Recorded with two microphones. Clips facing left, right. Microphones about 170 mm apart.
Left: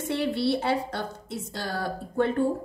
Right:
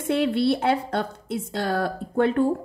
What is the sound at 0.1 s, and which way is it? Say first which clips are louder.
A woman's voice: right 5 dB; 60° right (ahead or behind).